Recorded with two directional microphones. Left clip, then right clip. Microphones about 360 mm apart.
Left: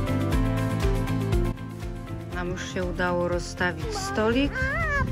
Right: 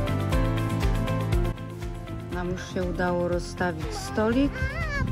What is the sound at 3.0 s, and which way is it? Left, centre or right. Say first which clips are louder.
Music: left 1 dB; centre.